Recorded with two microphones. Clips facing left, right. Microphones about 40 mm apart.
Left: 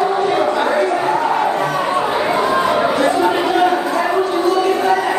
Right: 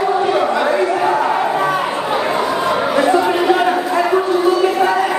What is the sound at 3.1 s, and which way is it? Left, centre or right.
Chatter, centre.